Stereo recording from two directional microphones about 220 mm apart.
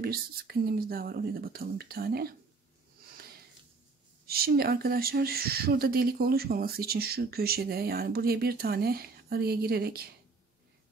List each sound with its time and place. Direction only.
0.0 s speech: 45° right (ahead or behind)
4.3 s speech: 45° right (ahead or behind)